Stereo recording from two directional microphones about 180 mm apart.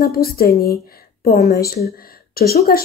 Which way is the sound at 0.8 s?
60° left (ahead or behind).